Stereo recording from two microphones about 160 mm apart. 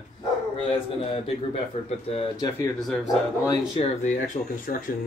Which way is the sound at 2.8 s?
Centre (ahead or behind).